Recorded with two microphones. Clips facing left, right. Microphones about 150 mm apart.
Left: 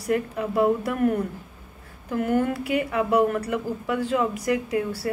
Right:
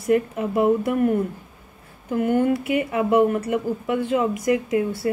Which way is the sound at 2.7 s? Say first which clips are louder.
Right 1 dB; 25° right (ahead or behind).